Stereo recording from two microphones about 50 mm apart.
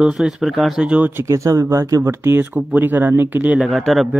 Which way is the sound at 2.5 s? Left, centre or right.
Right.